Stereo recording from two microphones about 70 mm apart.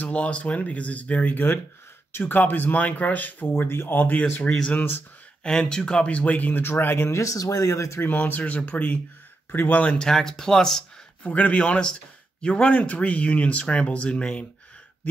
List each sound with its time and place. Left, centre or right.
0.0 s speech: centre
4.7 s speech: left
5.4 s speech: centre; by 7.1 s left
7.1 s speech: left
8.0 s speech: left
9.8 s speech: centre
11.2 s speech: left